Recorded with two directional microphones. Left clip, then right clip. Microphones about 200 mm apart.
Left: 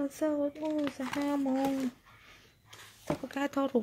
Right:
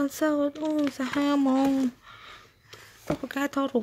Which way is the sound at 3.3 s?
10° right (ahead or behind).